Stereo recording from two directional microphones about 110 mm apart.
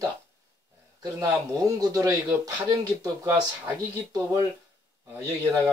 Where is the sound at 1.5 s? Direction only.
30° right (ahead or behind).